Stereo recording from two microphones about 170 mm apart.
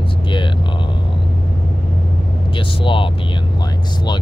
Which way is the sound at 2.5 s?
30° left (ahead or behind).